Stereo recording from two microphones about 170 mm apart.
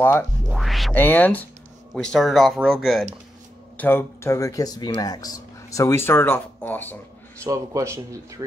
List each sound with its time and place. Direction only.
0.5 s speech: centre (ahead or behind)
0.9 s speech: 10° left (ahead or behind)
3.7 s speech: 10° left (ahead or behind)
7.4 s speech: 20° right (ahead or behind)